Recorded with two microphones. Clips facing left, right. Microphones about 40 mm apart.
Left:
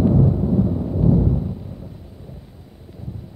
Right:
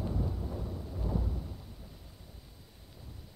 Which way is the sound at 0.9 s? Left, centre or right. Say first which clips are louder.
Left 18 dB; left.